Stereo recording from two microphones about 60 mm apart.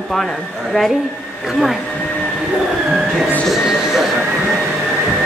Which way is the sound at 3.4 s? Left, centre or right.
Centre.